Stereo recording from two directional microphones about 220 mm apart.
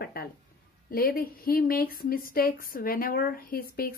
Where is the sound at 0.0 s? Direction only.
45° left (ahead or behind).